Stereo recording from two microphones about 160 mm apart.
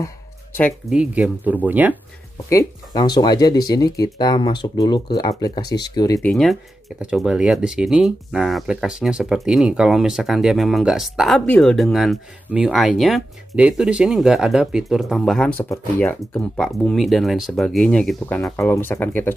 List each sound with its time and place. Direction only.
0.0 s a sound: 10° left (ahead or behind)
0.8 s speech: 5° right (ahead or behind)
2.5 s speech: 25° left (ahead or behind)
6.2 s speech: centre (ahead or behind)